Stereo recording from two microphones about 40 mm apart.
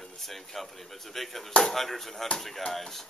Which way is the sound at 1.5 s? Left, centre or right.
Centre.